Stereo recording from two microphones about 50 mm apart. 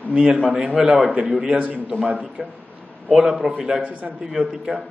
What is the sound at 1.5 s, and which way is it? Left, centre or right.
Speech, right.